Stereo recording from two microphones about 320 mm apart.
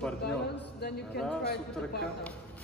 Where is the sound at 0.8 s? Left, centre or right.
Left.